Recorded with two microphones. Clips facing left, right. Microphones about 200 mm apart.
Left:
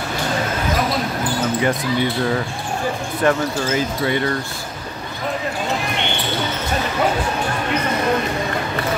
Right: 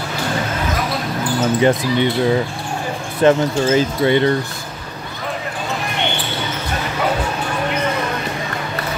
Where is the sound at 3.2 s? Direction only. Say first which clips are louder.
Right 5 dB; 25° right (ahead or behind).